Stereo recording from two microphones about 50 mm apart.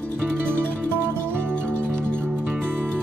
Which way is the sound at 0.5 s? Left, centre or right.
Right.